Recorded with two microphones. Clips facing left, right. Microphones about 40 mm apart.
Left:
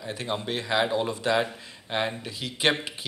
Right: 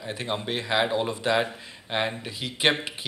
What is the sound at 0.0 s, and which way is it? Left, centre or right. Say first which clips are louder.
Speech: right 1 dB; right.